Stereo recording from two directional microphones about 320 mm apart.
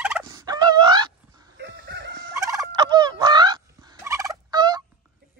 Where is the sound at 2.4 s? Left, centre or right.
Centre.